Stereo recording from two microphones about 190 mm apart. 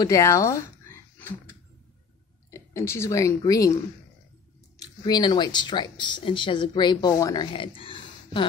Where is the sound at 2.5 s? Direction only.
15° left (ahead or behind).